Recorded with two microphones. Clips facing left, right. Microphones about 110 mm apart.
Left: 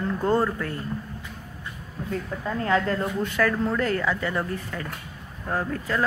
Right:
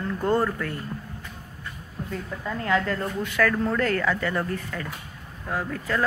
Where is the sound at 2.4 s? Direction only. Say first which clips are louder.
Left 1 dB; 30° left (ahead or behind).